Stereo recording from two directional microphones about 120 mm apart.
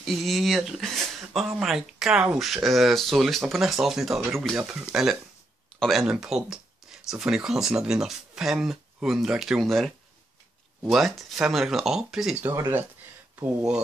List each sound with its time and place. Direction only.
0.0 s speech: centre (ahead or behind)
12.4 s speech: 20° right (ahead or behind)